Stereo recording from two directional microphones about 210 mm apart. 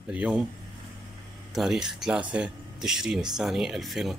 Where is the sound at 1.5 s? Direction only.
Centre (ahead or behind).